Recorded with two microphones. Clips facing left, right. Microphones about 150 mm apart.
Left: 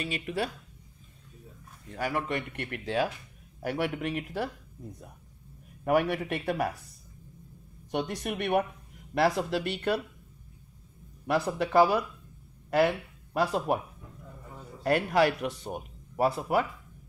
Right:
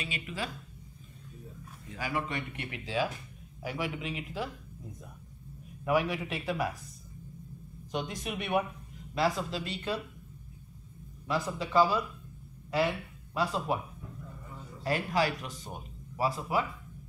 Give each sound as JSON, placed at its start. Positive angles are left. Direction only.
{"t": 0.0, "sound": "speech", "side_deg": 55}
{"t": 2.0, "sound": "speech", "side_deg": 55}
{"t": 5.9, "sound": "speech", "side_deg": 55}
{"t": 8.1, "sound": "speech", "side_deg": 60}
{"t": 11.2, "sound": "speech", "side_deg": 65}
{"t": 14.8, "sound": "speech", "side_deg": 60}